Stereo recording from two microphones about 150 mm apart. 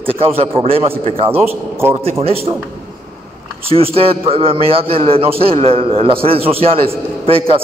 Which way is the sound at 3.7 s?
40° right (ahead or behind).